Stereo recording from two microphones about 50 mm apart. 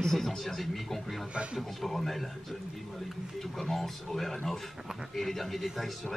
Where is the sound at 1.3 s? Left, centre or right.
Right.